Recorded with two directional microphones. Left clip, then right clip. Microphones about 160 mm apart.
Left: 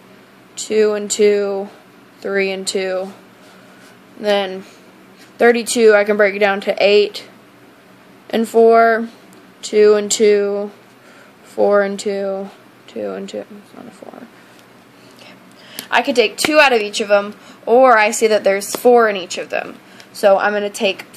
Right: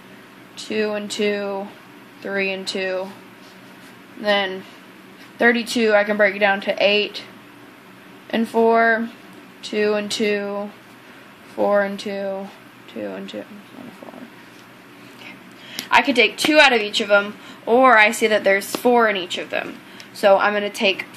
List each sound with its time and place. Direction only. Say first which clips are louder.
0.6 s speech: left 8 dB; 60° left (ahead or behind)
4.2 s a woman's voice: left 3 dB; 55° left (ahead or behind)
8.3 s speech: left 6 dB; 60° left (ahead or behind)
15.9 s a woman's voice: left 1 dB; 40° left (ahead or behind)